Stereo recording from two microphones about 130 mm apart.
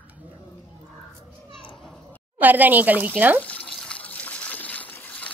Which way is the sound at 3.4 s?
5° left (ahead or behind).